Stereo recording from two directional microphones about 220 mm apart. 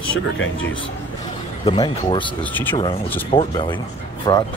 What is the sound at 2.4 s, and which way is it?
Speech, 10° left (ahead or behind).